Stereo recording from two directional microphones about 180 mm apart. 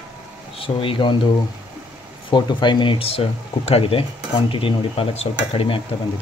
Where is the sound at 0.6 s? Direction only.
30° left (ahead or behind).